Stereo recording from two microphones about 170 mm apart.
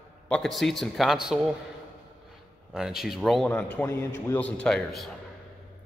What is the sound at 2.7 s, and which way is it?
A man's voice, 5° right (ahead or behind).